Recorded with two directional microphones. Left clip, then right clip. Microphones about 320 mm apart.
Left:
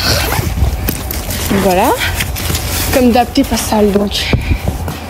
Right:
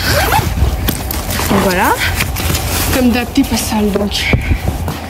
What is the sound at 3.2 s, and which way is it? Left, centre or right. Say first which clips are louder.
Speech: left 3 dB; centre.